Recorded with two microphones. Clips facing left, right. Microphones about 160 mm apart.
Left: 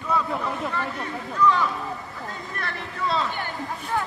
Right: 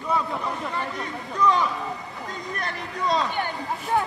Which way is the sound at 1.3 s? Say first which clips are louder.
Even; 15° right (ahead or behind).